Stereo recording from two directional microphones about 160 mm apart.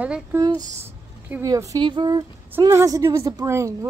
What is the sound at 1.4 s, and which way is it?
A woman's voice, 20° right (ahead or behind).